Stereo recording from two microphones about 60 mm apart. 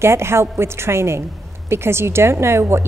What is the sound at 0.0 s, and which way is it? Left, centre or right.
A woman's voice, right.